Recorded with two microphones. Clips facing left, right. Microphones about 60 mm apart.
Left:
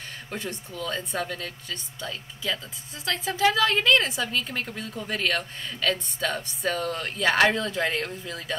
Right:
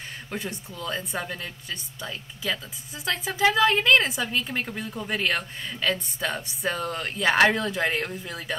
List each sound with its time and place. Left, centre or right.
0.3 s a woman's voice: centre